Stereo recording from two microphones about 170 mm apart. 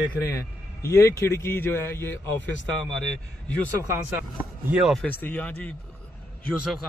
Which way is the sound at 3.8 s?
15° right (ahead or behind).